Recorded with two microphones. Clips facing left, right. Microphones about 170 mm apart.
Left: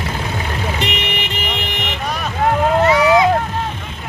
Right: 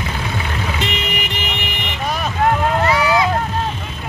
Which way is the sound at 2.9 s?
20° left (ahead or behind).